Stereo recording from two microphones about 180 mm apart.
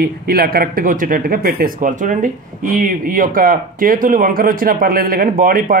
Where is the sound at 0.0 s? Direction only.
55° right (ahead or behind).